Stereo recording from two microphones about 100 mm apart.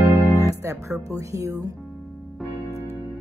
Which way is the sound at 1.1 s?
30° right (ahead or behind).